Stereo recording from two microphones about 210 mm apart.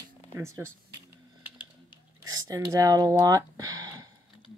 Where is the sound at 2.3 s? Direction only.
15° right (ahead or behind).